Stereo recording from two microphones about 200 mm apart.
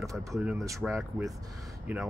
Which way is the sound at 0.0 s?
15° right (ahead or behind).